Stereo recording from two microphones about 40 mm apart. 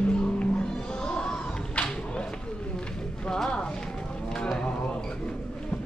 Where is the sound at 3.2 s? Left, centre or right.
Centre.